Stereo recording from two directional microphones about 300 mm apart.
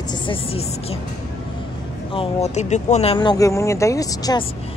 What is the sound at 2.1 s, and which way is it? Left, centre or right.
Speech, centre.